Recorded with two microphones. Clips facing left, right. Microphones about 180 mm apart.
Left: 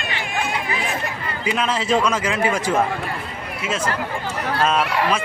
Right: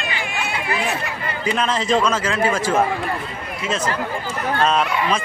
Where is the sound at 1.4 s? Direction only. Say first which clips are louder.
Right 1 dB; 5° left (ahead or behind).